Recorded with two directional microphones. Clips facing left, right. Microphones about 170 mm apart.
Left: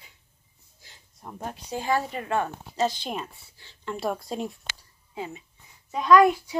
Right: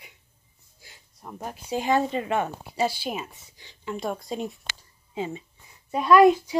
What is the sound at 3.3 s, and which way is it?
Speech, 15° right (ahead or behind).